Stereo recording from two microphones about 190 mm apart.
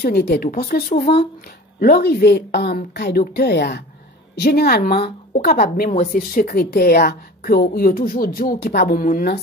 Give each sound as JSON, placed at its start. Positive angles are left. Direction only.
{"t": 0.0, "sound": "a woman's voice", "side_deg": 60}
{"t": 0.8, "sound": "speech", "side_deg": 35}
{"t": 1.8, "sound": "a woman's voice", "side_deg": 55}